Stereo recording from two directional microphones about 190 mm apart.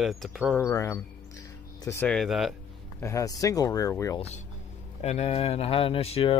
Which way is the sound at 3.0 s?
15° left (ahead or behind).